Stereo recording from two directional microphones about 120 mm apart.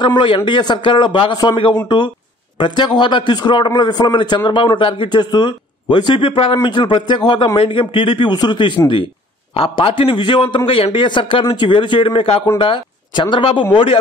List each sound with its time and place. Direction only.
0.0 s a man's voice: 45° left (ahead or behind)